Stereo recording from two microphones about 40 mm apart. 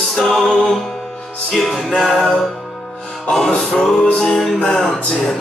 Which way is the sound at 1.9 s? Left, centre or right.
Centre.